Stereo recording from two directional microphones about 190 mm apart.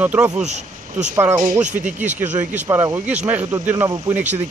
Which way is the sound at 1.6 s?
40° right (ahead or behind).